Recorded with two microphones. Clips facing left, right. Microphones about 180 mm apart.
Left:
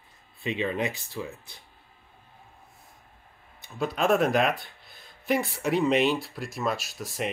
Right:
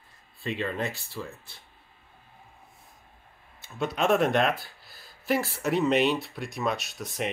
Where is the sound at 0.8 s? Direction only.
15° left (ahead or behind).